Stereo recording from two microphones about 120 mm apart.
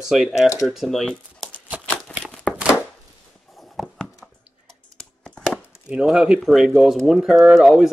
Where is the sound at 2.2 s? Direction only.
10° left (ahead or behind).